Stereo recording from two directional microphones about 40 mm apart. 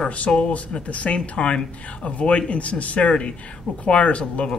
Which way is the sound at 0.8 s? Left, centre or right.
Left.